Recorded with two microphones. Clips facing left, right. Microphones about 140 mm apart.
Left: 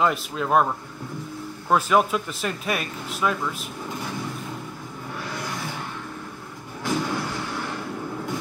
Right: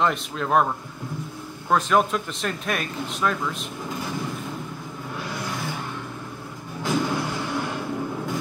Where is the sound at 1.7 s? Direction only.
5° left (ahead or behind).